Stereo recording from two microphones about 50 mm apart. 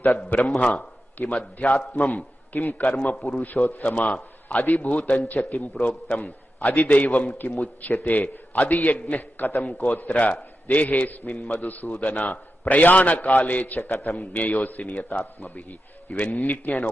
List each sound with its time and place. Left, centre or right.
0.3 s a man's voice: left